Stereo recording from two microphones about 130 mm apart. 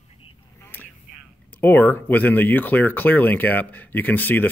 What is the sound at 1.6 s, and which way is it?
Speech, 15° left (ahead or behind).